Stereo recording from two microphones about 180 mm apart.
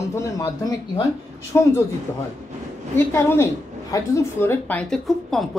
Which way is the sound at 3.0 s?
10° left (ahead or behind).